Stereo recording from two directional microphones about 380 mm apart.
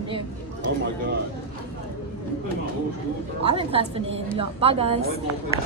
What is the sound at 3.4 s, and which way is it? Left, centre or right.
A woman's voice, centre.